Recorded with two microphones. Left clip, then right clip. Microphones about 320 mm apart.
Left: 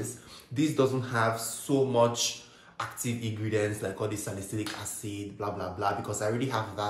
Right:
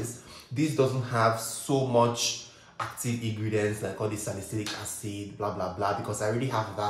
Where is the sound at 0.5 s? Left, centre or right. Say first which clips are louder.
Even; centre.